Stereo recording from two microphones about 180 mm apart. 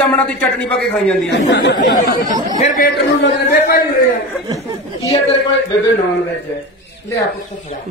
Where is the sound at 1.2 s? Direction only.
75° left (ahead or behind).